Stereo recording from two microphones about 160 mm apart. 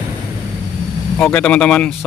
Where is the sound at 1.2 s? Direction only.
10° left (ahead or behind).